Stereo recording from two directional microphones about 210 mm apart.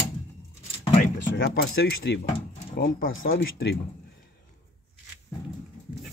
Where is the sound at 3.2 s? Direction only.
45° left (ahead or behind).